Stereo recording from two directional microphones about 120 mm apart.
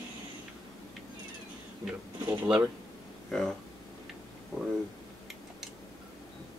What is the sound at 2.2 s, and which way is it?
Speech, 15° right (ahead or behind).